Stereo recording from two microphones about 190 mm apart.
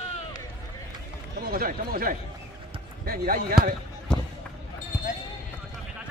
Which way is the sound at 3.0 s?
50° right (ahead or behind).